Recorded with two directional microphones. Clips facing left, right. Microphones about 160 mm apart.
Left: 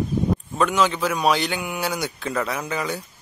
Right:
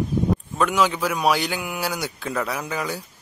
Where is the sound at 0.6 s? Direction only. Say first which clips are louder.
Left 1 dB; 10° right (ahead or behind).